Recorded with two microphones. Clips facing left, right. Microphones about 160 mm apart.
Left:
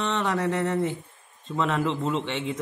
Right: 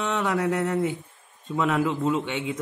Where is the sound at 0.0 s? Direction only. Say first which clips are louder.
Right 1 dB; 10° right (ahead or behind).